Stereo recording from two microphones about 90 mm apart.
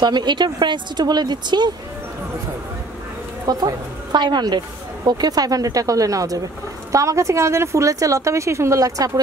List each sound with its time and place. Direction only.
0.0 s speech: 55° right (ahead or behind)
3.4 s a woman's voice: 50° right (ahead or behind)